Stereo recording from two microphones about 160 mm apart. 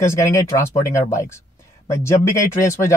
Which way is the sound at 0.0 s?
20° left (ahead or behind).